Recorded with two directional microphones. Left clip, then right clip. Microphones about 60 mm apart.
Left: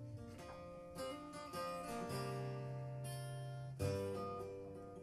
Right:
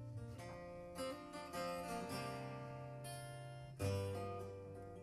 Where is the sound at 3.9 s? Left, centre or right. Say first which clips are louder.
Left 3 dB; right.